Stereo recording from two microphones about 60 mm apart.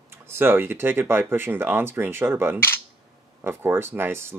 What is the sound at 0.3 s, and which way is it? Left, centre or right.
Speech, right.